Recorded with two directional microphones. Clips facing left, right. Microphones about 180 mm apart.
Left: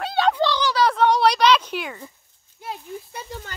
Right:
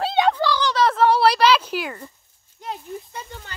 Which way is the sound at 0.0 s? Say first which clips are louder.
Right 3 dB; 20° right (ahead or behind).